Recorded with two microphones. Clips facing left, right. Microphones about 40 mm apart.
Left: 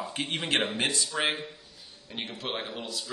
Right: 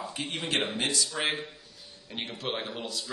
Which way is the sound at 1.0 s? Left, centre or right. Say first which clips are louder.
Left 1 dB; centre.